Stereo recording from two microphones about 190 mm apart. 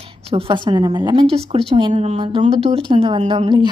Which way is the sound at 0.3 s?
30° right (ahead or behind).